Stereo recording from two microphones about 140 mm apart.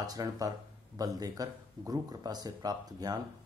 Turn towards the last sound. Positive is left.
turn(degrees=-30)  # may be behind; listen again after turning